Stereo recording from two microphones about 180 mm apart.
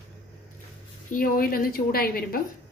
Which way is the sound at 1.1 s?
50° left (ahead or behind).